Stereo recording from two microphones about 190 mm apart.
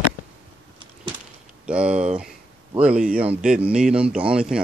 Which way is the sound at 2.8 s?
5° right (ahead or behind).